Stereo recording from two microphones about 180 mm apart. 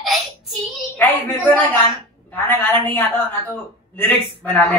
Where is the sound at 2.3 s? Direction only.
10° left (ahead or behind).